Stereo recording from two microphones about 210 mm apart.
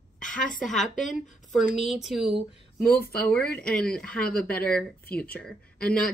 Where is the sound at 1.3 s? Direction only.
35° left (ahead or behind).